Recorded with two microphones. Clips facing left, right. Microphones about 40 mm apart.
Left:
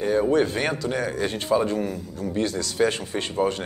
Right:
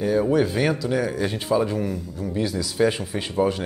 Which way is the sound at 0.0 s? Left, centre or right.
Centre.